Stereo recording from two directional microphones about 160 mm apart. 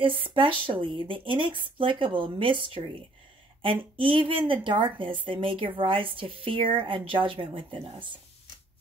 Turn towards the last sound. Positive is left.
turn(degrees=-35)  # may be behind; listen again after turning